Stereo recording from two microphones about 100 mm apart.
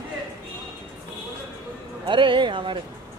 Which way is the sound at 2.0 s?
55° right (ahead or behind).